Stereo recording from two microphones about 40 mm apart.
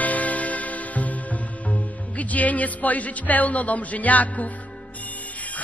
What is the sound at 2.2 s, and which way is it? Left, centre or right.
Speech, left.